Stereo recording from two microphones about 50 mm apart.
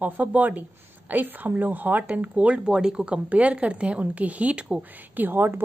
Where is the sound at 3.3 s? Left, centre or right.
Right.